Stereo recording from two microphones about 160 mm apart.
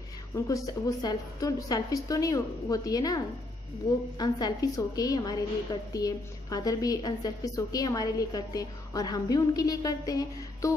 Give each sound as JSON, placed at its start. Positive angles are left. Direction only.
{"t": 0.7, "sound": "a woman's voice", "side_deg": 20}